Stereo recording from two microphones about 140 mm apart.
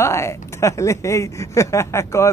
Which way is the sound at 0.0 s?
20° left (ahead or behind).